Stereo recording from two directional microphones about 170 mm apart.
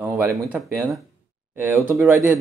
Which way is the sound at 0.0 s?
15° right (ahead or behind).